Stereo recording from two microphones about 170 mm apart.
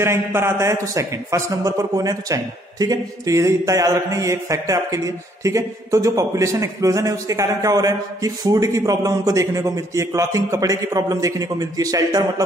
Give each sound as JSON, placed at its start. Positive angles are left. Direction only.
{"t": 0.0, "sound": "a man's voice", "side_deg": -15}